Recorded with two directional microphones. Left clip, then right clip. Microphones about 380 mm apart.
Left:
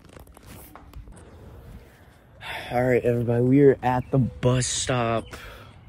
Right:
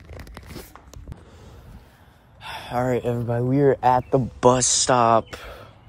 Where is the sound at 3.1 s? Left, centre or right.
Left.